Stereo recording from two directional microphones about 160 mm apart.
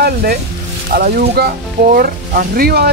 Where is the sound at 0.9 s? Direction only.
70° right (ahead or behind).